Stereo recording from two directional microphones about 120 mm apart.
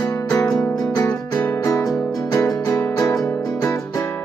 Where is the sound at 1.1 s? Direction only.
15° left (ahead or behind).